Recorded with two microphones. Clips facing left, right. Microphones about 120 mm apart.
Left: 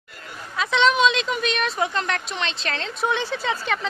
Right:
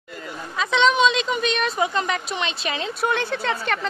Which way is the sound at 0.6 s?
Centre (ahead or behind).